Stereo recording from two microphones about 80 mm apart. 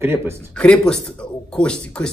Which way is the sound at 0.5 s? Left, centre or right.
Centre.